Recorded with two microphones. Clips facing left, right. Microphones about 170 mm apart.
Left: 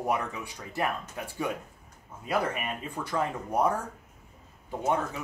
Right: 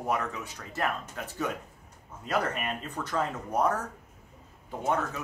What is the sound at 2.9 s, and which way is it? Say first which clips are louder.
Speech: left 1 dB; 10° left (ahead or behind).